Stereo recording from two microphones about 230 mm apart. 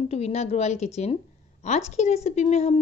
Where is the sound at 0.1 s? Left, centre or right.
Left.